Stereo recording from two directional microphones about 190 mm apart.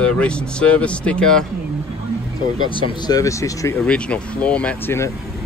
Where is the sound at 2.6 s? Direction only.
25° left (ahead or behind).